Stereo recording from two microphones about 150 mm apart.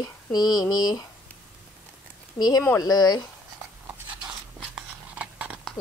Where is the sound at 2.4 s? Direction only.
25° left (ahead or behind).